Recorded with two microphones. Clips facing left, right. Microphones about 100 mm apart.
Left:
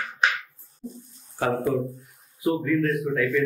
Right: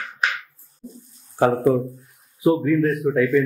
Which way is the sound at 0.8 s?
Centre (ahead or behind).